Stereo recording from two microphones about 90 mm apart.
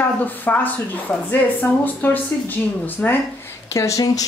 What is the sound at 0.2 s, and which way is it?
A woman's voice, 20° left (ahead or behind).